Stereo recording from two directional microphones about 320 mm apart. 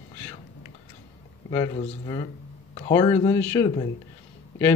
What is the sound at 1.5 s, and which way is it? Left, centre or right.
A man's voice, centre.